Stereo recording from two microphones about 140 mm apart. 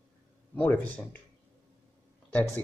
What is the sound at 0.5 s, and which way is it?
Speech, 10° left (ahead or behind).